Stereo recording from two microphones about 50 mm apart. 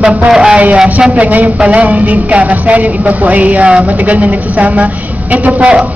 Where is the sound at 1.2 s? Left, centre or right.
Right.